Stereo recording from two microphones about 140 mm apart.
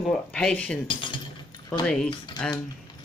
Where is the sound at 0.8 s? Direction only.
35° left (ahead or behind).